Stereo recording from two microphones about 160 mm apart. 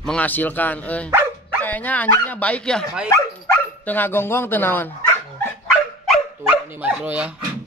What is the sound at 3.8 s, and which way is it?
Speech, 10° left (ahead or behind).